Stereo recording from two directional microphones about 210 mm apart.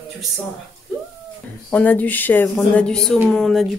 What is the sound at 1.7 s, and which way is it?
A woman's voice, 10° left (ahead or behind).